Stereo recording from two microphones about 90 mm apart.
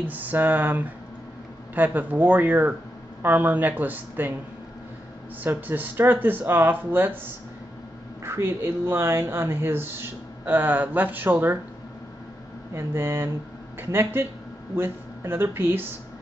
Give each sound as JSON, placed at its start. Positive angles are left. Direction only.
{"t": 0.0, "sound": "speech", "side_deg": -20}
{"t": 5.4, "sound": "speech", "side_deg": -20}
{"t": 8.2, "sound": "speech", "side_deg": -30}
{"t": 12.7, "sound": "speech", "side_deg": -25}